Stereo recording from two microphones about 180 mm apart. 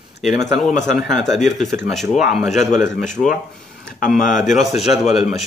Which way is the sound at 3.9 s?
50° left (ahead or behind).